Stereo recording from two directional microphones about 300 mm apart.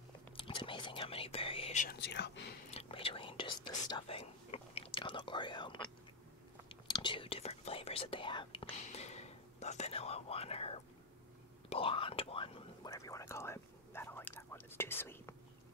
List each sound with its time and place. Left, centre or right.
0.4 s whispering: centre; by 2.5 s left
2.7 s whispering: centre